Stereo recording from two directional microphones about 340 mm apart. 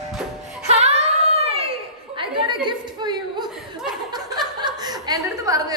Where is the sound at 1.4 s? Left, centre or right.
Centre.